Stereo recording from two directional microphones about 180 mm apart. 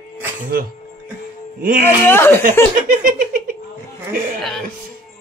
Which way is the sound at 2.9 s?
50° right (ahead or behind).